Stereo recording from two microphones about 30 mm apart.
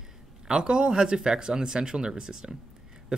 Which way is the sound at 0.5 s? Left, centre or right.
Right.